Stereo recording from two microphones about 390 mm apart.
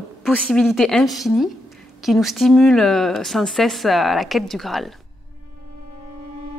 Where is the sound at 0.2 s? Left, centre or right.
Centre.